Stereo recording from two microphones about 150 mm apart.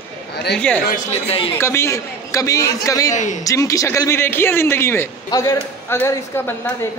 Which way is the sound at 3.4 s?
20° left (ahead or behind).